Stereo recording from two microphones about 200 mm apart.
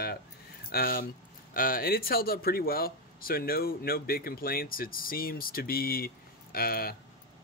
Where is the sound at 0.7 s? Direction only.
50° left (ahead or behind).